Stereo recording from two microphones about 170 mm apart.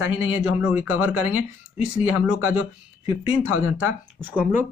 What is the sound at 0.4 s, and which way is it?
Speech, 10° right (ahead or behind).